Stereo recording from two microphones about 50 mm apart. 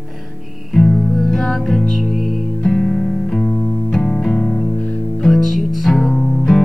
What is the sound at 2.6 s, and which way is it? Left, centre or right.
Music, centre.